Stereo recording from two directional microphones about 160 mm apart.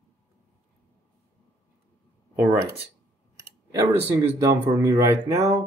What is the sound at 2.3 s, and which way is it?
Speech, 10° right (ahead or behind).